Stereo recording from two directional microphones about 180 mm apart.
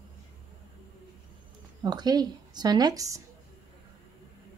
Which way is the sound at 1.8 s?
25° right (ahead or behind).